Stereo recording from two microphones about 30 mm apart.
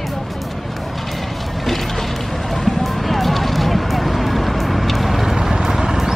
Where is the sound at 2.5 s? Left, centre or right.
Centre.